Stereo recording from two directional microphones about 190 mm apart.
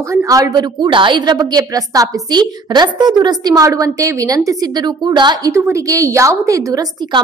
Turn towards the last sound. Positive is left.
turn(degrees=-20)  # may be behind; listen again after turning